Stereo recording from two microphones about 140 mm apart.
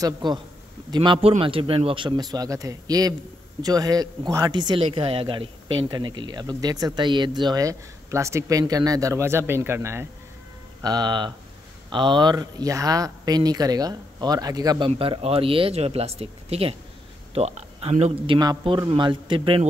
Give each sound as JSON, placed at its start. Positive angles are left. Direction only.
{"t": 0.0, "sound": "speech", "side_deg": -30}
{"t": 10.8, "sound": "speech", "side_deg": -30}
{"t": 14.9, "sound": "speech", "side_deg": -45}
{"t": 18.3, "sound": "speech", "side_deg": -35}